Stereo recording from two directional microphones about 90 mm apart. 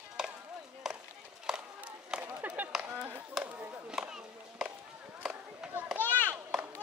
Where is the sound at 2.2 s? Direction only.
20° right (ahead or behind).